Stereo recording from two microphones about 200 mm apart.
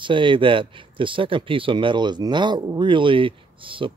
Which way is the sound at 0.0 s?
25° right (ahead or behind).